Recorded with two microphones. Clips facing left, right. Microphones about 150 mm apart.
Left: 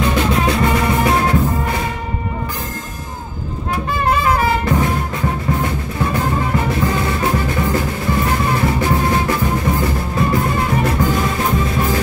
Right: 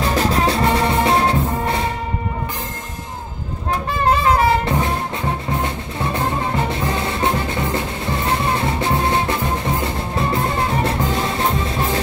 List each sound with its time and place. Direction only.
0.0 s music: 35° right (ahead or behind)
4.0 s music: 30° right (ahead or behind)